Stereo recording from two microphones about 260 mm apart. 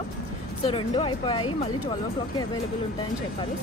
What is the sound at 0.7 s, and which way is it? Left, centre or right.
Speech, left.